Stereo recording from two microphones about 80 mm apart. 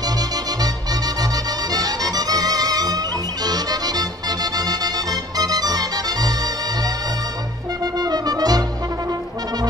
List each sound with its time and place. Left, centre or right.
1.7 s music: right
7.8 s music: right